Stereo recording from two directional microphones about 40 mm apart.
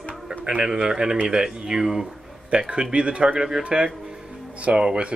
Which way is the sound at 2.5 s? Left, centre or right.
Right.